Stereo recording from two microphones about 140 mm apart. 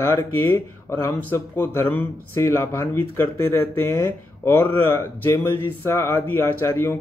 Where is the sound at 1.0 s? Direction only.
15° left (ahead or behind).